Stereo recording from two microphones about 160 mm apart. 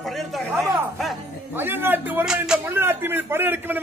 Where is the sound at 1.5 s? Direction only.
15° right (ahead or behind).